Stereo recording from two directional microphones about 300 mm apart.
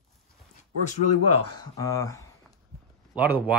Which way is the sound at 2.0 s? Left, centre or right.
Centre.